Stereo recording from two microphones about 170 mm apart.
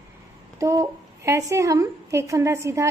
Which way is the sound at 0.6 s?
20° right (ahead or behind).